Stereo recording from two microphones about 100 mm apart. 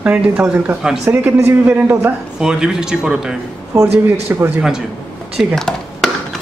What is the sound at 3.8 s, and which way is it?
Speech, 20° right (ahead or behind).